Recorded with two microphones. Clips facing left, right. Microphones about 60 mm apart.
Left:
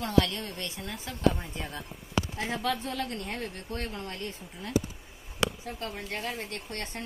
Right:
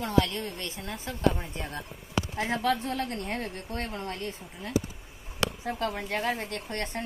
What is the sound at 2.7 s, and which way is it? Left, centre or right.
A woman's voice, right.